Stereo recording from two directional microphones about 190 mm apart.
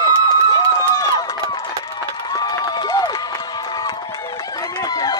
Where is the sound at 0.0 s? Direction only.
20° left (ahead or behind).